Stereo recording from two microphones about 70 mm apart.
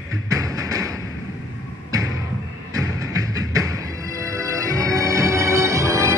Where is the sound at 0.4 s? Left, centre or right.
Right.